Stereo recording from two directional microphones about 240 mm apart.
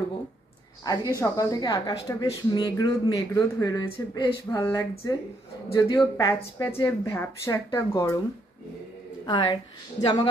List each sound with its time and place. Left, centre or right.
0.8 s speech: centre
9.2 s a woman's voice: centre